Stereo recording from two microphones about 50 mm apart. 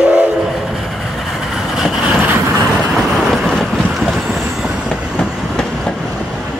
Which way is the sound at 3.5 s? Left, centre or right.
Centre.